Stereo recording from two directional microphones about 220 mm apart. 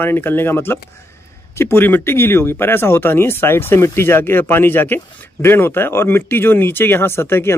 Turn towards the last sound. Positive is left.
turn(degrees=10)  # may be behind; listen again after turning